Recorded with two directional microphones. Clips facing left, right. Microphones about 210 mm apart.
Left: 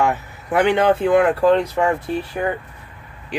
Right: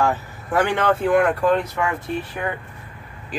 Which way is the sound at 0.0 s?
20° left (ahead or behind).